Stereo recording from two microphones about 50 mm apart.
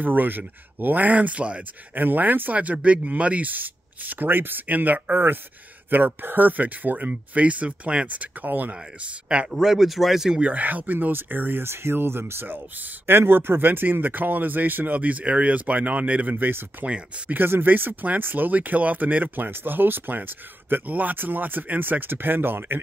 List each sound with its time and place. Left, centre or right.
0.0 s speech: right
2.0 s speech: right
9.5 s speech: centre
10.4 s speech: right